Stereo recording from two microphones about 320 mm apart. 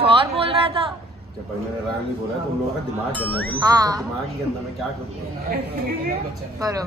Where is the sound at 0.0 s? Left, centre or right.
Centre.